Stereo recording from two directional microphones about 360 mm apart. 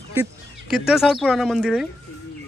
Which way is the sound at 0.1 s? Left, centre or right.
Centre.